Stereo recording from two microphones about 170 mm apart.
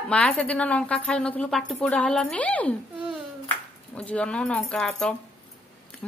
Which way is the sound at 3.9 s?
5° left (ahead or behind).